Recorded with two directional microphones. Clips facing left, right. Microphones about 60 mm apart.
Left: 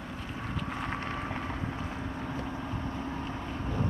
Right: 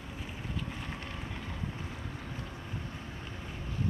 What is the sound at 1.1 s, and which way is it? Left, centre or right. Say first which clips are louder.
Vehicle: left 7 dB; left.